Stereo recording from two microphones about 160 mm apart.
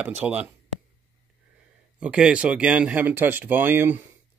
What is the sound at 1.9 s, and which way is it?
Speech, 5° right (ahead or behind).